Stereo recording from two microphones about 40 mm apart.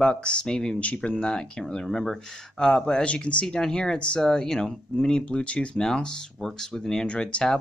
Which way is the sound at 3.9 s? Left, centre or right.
Left.